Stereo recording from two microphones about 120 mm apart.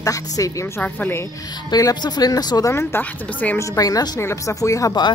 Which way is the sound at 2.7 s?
15° left (ahead or behind).